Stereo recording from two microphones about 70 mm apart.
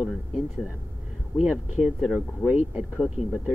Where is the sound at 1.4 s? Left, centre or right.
Centre.